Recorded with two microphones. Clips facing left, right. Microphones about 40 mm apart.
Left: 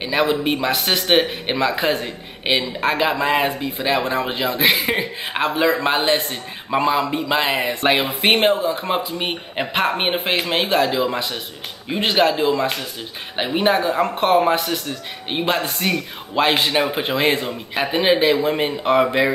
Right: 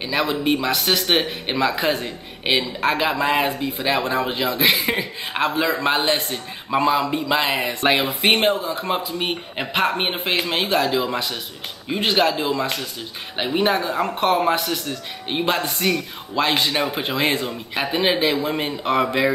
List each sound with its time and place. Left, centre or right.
0.0 s speech: centre
8.7 s speech: centre; by 16.7 s left
16.7 s speech: centre